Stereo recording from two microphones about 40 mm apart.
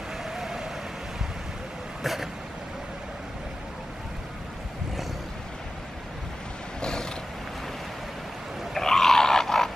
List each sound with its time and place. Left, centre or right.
0.2 s vehicle: centre
6.8 s a sound: centre
8.7 s roar: centre